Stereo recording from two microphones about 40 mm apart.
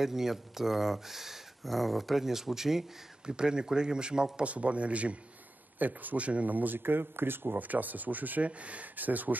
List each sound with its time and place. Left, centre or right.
0.0 s speech: centre
3.3 s speech: right
4.5 s a man's voice: right
5.8 s speech: right
6.8 s speech: right
7.6 s speech: right
8.5 s a man's voice: right
8.8 s speech: right